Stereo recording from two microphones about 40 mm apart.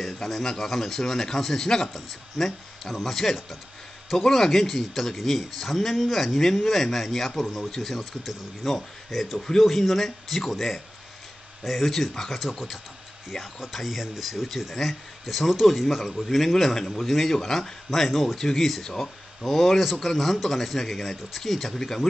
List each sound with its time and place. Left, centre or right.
0.0 s speech: centre